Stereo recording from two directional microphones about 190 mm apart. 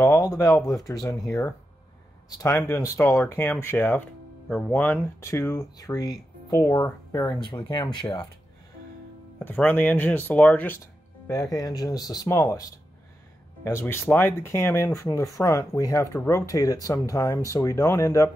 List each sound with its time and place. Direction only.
0.0 s speech: 15° left (ahead or behind)
9.4 s speech: 10° left (ahead or behind)